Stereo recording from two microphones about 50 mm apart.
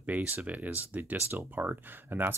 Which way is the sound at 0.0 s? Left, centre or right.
Right.